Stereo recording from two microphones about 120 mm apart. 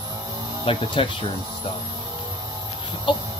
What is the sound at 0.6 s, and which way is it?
Speech, 45° left (ahead or behind).